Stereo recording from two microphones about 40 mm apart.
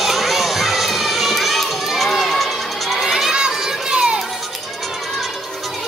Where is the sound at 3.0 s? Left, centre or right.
Centre.